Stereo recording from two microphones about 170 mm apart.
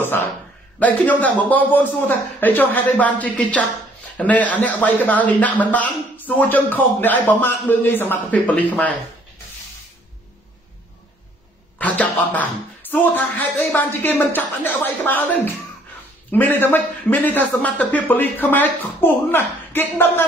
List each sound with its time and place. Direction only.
0.0 s a man's voice: 10° left (ahead or behind)
11.8 s a sound: 10° left (ahead or behind)
12.9 s a man's voice: 10° left (ahead or behind)